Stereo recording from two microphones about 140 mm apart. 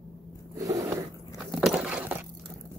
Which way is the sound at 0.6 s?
25° right (ahead or behind).